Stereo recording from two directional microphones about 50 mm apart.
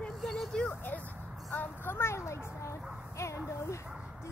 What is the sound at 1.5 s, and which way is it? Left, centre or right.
Speech, left.